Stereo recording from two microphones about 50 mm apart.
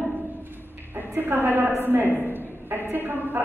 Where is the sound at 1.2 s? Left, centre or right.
Right.